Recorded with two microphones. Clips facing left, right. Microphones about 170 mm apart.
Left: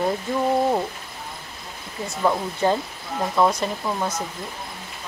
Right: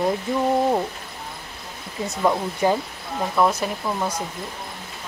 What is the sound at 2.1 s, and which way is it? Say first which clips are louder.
Speech: right 1 dB; 10° right (ahead or behind).